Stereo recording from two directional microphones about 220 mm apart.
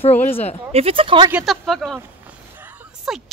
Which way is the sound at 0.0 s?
30° left (ahead or behind).